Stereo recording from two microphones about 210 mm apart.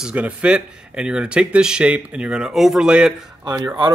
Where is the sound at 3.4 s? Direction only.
20° right (ahead or behind).